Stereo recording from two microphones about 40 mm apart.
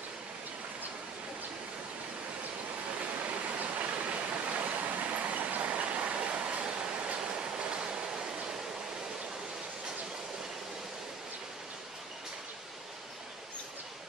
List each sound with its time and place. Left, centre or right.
3.5 s waterfall: right
5.7 s train: right
7.2 s a sound: right